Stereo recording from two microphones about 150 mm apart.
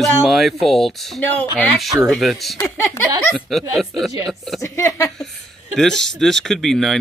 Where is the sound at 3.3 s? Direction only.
Centre (ahead or behind).